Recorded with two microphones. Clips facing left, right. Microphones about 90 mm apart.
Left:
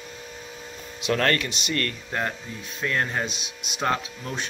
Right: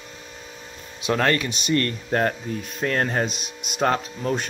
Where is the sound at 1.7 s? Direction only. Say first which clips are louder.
Right 8 dB; 30° right (ahead or behind).